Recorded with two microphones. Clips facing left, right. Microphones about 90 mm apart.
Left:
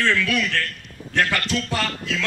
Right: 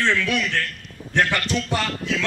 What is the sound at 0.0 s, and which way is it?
A man's voice, 20° right (ahead or behind).